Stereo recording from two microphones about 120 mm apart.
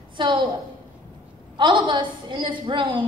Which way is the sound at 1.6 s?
40° right (ahead or behind).